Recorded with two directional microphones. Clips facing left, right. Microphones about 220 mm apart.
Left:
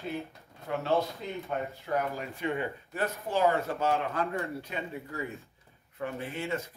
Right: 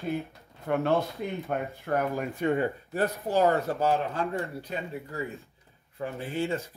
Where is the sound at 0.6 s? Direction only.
55° right (ahead or behind).